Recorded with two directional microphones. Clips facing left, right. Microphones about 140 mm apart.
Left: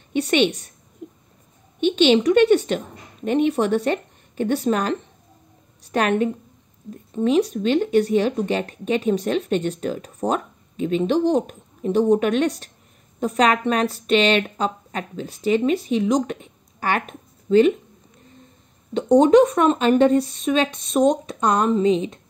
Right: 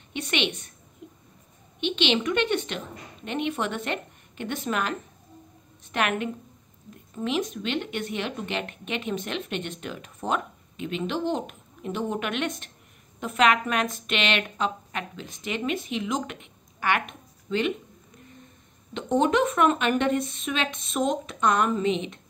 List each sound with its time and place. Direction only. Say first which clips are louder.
0.1 s speech: left 10 dB; 40° left (ahead or behind)
1.0 s a sound: left 7 dB; 45° left (ahead or behind)
1.8 s a woman's voice: left 9 dB; 40° left (ahead or behind)
18.9 s speech: left 9 dB; 40° left (ahead or behind)